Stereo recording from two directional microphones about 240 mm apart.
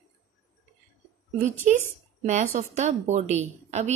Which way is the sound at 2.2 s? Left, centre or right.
Right.